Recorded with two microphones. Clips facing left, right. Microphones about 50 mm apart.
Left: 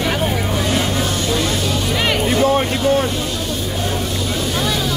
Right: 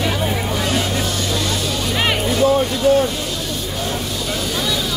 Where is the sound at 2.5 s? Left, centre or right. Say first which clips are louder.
Right 1 dB; left.